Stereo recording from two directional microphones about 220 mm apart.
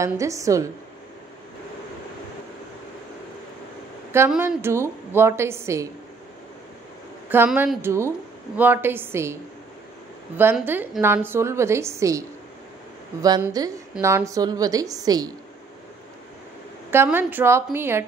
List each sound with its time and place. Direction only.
0.0 s a woman's voice: 15° right (ahead or behind)
4.1 s a woman's voice: 10° right (ahead or behind)
7.2 s a woman's voice: 10° right (ahead or behind)
16.9 s a woman's voice: 10° right (ahead or behind)